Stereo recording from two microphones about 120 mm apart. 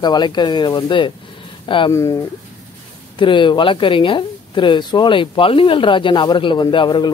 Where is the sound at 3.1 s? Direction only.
40° left (ahead or behind).